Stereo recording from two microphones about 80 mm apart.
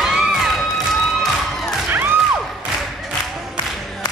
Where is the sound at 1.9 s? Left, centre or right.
Right.